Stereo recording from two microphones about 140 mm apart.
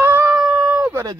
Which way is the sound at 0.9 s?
25° right (ahead or behind).